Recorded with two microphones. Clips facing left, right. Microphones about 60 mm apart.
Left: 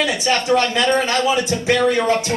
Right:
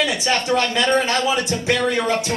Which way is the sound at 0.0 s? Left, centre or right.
Centre.